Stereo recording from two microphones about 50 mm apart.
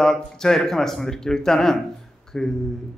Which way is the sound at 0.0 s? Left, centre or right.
Centre.